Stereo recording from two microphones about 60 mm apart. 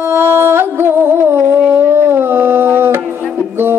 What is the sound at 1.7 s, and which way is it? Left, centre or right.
Howl, right.